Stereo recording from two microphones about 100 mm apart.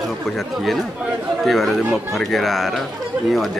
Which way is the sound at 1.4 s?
Centre (ahead or behind).